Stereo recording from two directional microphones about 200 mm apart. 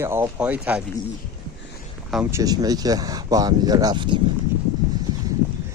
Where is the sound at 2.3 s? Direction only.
20° right (ahead or behind).